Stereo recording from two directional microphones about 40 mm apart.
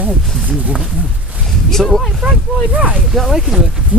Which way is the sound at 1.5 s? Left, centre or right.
Centre.